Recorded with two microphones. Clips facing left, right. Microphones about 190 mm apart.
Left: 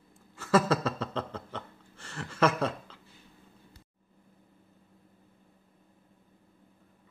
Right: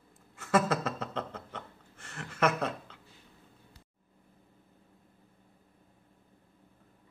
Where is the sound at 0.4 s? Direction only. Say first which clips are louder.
Left 3 dB; 35° left (ahead or behind).